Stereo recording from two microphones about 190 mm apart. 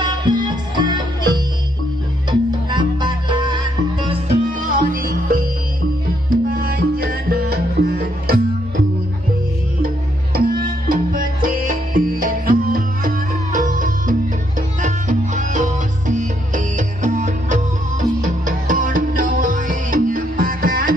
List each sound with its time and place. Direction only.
0.0 s music: 25° right (ahead or behind)
2.7 s music: 25° right (ahead or behind)
4.5 s music: 45° right (ahead or behind)
9.8 s music: 50° right (ahead or behind)